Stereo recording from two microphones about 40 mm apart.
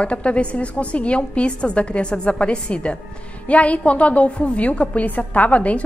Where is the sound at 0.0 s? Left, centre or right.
Left.